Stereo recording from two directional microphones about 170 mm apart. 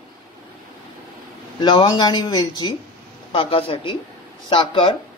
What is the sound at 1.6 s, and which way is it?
Speech, 25° left (ahead or behind).